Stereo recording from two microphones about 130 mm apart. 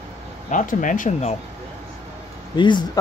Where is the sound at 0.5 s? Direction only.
85° left.